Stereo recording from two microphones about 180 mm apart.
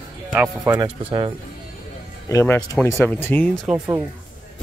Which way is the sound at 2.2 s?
15° left (ahead or behind).